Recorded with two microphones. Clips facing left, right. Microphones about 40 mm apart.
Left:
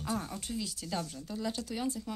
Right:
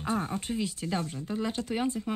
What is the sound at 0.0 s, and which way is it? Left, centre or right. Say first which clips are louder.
Speech: right 6 dB; right.